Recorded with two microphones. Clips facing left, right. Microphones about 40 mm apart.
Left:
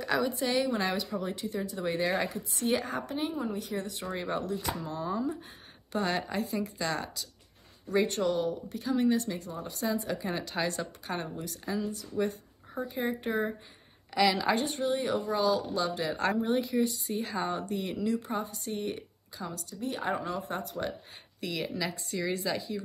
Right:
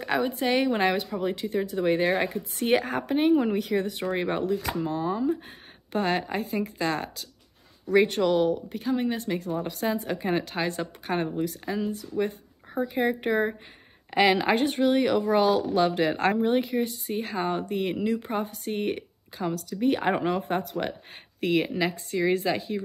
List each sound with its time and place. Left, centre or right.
0.0 s a sound: right
0.4 s speech: right
8.9 s speech: right
9.3 s speech: right